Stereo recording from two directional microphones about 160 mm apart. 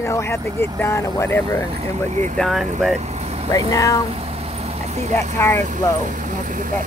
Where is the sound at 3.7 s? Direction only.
20° left (ahead or behind).